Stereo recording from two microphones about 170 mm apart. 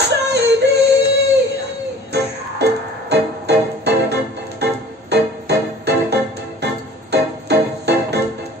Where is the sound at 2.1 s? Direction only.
75° right (ahead or behind).